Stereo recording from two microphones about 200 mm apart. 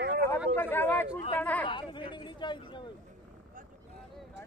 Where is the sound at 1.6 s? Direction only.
25° left (ahead or behind).